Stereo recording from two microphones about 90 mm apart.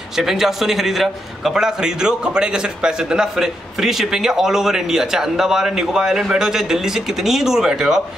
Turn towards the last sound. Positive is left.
turn(degrees=-5)  # may be behind; listen again after turning